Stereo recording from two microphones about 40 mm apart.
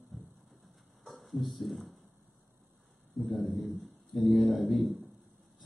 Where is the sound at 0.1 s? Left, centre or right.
Centre.